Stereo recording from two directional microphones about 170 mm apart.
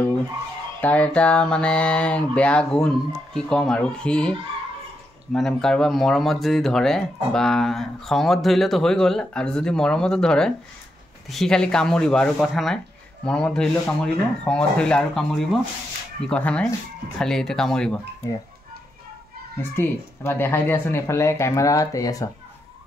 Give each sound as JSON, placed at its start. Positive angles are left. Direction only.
{"t": 0.7, "sound": "speech", "side_deg": 10}
{"t": 19.7, "sound": "speech", "side_deg": 15}